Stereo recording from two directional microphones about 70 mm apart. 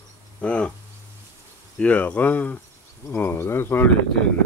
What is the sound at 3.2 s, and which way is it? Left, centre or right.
Speech, left.